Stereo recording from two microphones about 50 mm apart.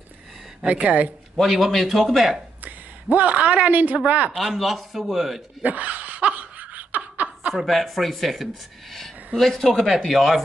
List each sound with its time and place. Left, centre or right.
0.7 s speech: right
1.3 s speech: centre
2.6 s a woman's voice: right
4.6 s speech: centre
5.6 s laughter: right
7.6 s speech: centre